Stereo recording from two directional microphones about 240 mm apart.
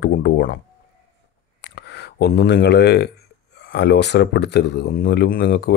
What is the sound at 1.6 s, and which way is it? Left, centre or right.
Speech, left.